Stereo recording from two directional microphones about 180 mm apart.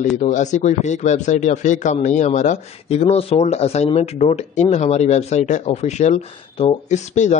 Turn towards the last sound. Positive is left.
turn(degrees=40)  # may be behind; listen again after turning